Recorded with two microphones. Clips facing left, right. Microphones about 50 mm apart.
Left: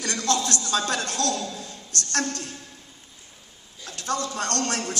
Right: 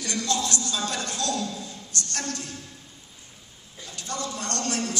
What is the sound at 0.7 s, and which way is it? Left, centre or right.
Speech, left.